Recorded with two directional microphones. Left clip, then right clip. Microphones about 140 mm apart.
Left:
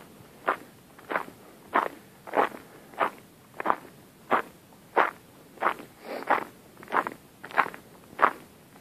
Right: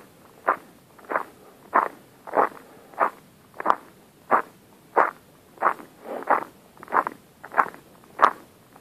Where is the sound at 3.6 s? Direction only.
25° left (ahead or behind).